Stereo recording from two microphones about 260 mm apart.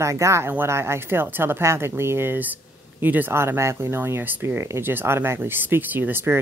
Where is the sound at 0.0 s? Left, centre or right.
Centre.